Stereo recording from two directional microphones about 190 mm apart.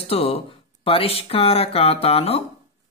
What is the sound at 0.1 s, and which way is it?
Speech, 30° left (ahead or behind).